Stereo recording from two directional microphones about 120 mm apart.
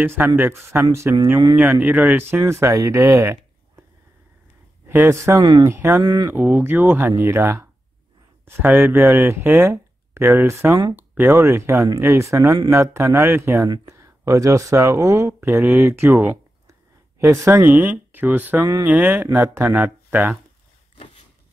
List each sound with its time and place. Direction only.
0.0 s speech: 20° right (ahead or behind)
4.8 s speech: 20° right (ahead or behind)
5.4 s speech: 35° right (ahead or behind)
5.7 s speech: 20° right (ahead or behind)
6.0 s speech: 30° right (ahead or behind)
6.3 s speech: 15° right (ahead or behind)